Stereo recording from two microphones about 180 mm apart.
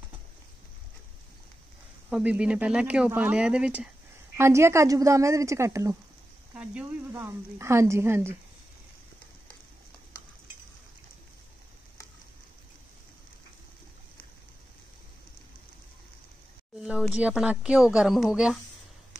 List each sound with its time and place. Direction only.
2.0 s a woman's voice: 5° right (ahead or behind)
16.8 s speech: 5° right (ahead or behind)